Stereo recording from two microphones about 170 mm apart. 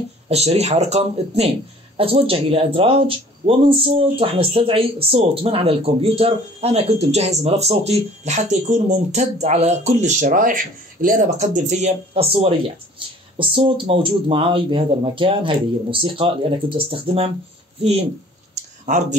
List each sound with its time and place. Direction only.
0.3 s speech: 40° right (ahead or behind)
18.9 s speech: 45° right (ahead or behind)